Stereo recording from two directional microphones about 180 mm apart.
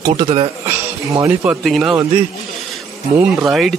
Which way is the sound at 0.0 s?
30° right (ahead or behind).